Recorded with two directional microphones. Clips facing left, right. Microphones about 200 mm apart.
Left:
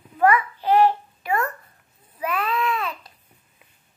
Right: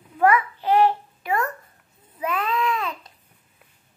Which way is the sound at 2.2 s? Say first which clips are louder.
Even; 20° right (ahead or behind).